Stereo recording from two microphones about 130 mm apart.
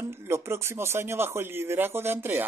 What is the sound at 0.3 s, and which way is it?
A man's voice, 20° right (ahead or behind).